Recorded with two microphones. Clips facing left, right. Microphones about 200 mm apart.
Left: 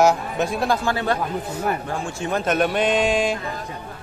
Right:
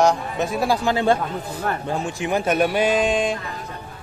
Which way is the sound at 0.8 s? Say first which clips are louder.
Right 3 dB; 25° right (ahead or behind).